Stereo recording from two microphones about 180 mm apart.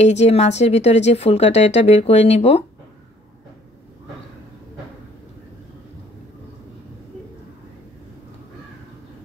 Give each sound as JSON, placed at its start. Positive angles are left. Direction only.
{"t": 0.0, "sound": "a woman's voice", "side_deg": 40}